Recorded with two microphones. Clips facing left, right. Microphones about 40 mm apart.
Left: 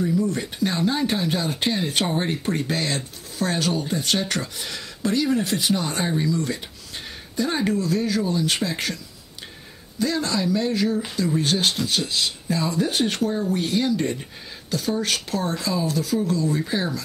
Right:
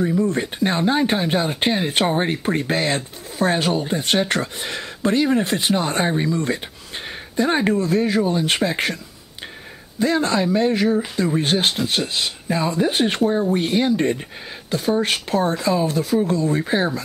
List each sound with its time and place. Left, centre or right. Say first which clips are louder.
0.0 s speech: right 3 dB; right